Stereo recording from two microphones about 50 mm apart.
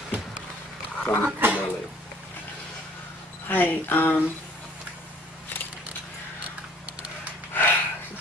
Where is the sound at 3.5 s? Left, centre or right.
Left.